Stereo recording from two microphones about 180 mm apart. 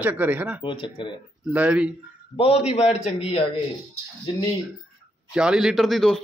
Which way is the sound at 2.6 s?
35° left (ahead or behind).